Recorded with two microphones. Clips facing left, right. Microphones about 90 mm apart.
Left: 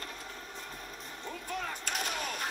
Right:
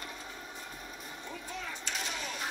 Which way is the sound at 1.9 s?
50° left (ahead or behind).